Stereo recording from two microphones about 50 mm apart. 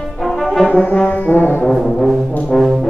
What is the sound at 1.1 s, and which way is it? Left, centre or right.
Brass instrument, left.